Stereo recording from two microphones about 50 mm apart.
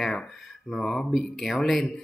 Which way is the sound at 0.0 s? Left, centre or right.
Centre.